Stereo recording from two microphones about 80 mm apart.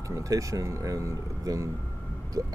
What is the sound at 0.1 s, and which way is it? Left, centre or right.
Speech, right.